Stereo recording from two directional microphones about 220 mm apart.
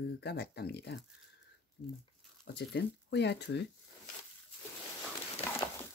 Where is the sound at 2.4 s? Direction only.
50° left (ahead or behind).